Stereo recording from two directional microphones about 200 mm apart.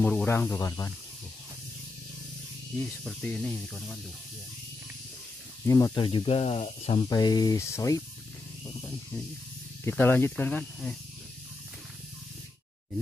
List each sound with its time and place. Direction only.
0.0 s speech: 5° left (ahead or behind)
2.8 s speech: centre (ahead or behind)
5.7 s speech: 15° left (ahead or behind)
6.0 s speech: 30° left (ahead or behind)
9.8 s speech: 10° left (ahead or behind)